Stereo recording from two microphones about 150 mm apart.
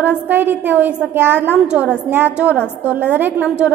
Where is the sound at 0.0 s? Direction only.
10° right (ahead or behind).